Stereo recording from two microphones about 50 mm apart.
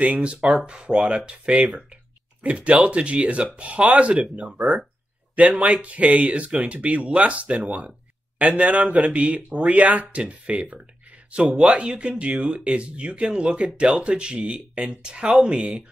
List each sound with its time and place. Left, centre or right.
0.0 s speech: right